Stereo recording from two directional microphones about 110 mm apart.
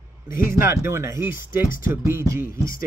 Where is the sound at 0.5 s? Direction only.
20° right (ahead or behind).